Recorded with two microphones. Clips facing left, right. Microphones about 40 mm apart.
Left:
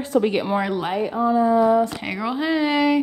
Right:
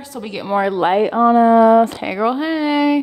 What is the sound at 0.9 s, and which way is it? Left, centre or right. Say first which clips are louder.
Speech: right 8 dB; right.